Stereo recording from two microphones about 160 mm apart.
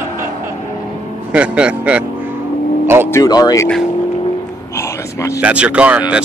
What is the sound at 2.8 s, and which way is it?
Vehicle, 15° right (ahead or behind).